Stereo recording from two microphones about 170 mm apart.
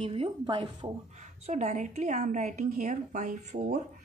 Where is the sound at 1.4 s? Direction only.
40° right (ahead or behind).